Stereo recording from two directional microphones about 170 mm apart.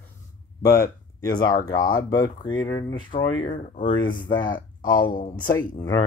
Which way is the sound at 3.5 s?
40° left (ahead or behind).